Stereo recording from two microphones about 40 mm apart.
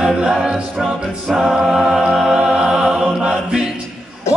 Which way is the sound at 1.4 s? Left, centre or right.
Centre.